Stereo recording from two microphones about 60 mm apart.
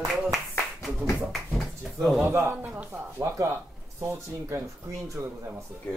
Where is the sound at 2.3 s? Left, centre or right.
Right.